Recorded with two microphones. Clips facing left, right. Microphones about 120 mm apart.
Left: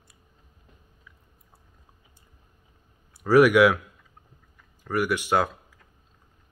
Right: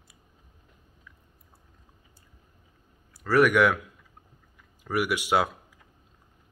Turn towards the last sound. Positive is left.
turn(degrees=-10)  # may be behind; listen again after turning